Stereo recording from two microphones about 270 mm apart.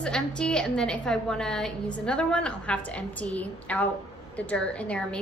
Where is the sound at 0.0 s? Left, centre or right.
Centre.